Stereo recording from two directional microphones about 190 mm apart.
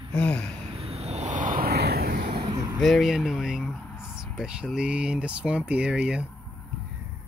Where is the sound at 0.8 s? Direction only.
30° right (ahead or behind); by 2.3 s 50° right (ahead or behind).